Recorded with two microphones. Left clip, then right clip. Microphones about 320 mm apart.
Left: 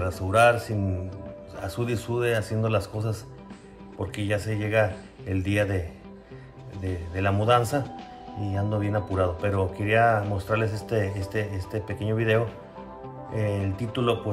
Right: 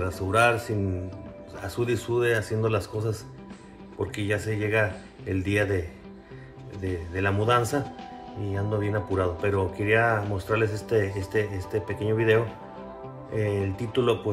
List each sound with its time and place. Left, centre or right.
0.0 s speech: centre
4.0 s speech: centre
6.8 s speech: centre